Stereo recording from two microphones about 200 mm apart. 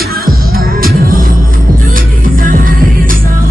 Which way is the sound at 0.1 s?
45° right (ahead or behind).